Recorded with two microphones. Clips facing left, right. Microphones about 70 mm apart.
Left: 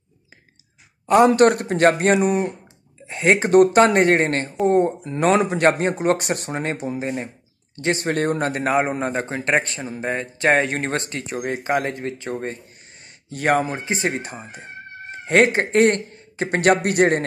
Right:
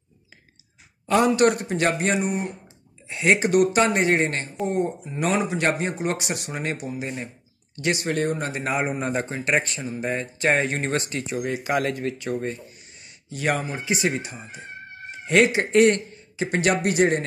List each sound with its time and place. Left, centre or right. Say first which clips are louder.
1.0 s a man's voice: left 6 dB; left
1.3 s a man's voice: left 4 dB; left
3.1 s a man's voice: left 3 dB; left
13.0 s speech: left 3 dB; left